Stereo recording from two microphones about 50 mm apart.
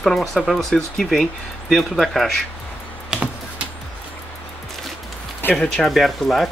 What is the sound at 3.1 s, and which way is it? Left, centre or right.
Computer keyboard, centre.